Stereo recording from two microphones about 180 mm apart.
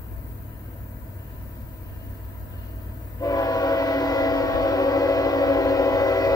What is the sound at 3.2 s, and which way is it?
Train, 20° left (ahead or behind).